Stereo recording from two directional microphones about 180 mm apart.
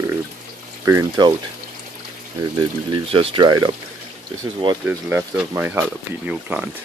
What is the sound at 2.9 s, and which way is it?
Speech, 30° right (ahead or behind).